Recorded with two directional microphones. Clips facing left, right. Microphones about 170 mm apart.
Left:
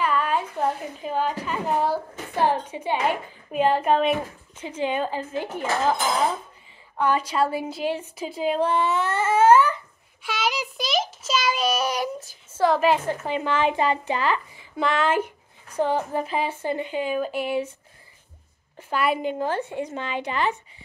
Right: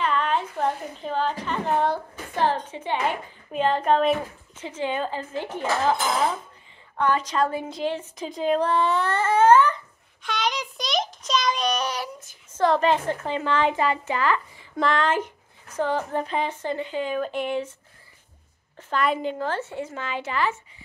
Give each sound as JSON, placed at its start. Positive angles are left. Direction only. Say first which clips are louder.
{"t": 0.0, "sound": "a woman's voice", "louder": "left 1 dB", "side_deg": 10}
{"t": 7.0, "sound": "a woman's voice", "louder": "left 1 dB", "side_deg": 10}
{"t": 14.8, "sound": "a woman's voice", "louder": "even", "side_deg": 5}
{"t": 18.8, "sound": "a woman's voice", "louder": "even", "side_deg": 10}